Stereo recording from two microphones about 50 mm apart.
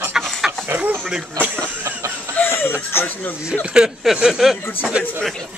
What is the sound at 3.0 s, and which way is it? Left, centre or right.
Speech, left.